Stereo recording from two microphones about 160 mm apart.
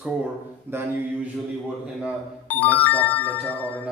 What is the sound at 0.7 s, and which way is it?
Speech, 15° right (ahead or behind).